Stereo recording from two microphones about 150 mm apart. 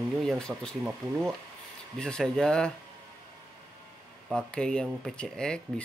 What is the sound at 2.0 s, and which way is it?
Speech, 5° left (ahead or behind).